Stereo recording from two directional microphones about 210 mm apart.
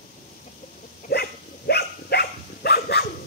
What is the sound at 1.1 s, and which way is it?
Dog, 50° left (ahead or behind).